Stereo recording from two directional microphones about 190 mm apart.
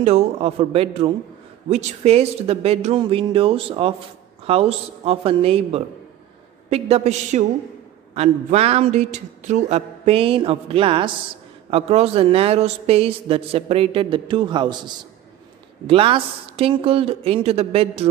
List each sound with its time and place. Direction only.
0.0 s a man's voice: 30° right (ahead or behind)